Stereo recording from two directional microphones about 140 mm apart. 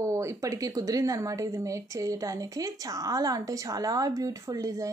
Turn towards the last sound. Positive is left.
turn(degrees=-25)  # may be behind; listen again after turning